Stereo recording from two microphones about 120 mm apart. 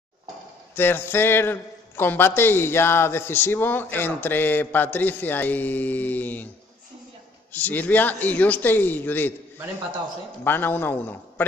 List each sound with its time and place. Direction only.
0.7 s a man's voice: 20° left (ahead or behind)
7.5 s a man's voice: 15° left (ahead or behind)
10.4 s a man's voice: 15° left (ahead or behind)